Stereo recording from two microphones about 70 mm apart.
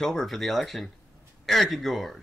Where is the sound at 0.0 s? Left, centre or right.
Centre.